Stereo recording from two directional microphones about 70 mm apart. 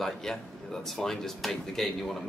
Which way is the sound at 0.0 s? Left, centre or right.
Centre.